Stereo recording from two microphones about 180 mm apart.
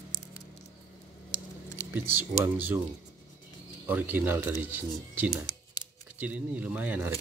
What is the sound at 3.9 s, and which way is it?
Speech, 10° right (ahead or behind).